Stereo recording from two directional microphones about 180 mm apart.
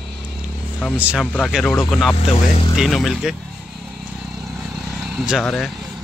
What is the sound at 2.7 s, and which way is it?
Speech, centre (ahead or behind).